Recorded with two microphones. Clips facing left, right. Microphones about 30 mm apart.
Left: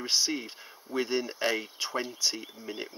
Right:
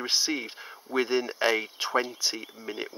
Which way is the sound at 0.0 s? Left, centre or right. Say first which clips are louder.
Right 1 dB; centre.